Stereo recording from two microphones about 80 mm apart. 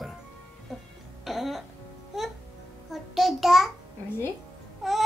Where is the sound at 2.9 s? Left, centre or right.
Centre.